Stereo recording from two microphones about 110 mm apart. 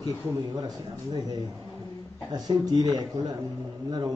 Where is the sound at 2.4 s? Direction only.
35° right (ahead or behind).